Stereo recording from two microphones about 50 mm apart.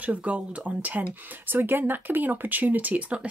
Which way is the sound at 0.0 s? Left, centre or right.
Right.